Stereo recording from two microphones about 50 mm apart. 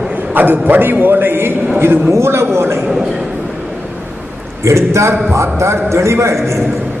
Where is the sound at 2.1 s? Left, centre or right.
Right.